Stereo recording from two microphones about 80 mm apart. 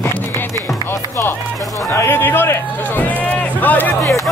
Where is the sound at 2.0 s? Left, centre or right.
Left.